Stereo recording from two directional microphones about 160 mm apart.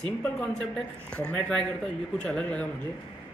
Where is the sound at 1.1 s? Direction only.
5° left (ahead or behind).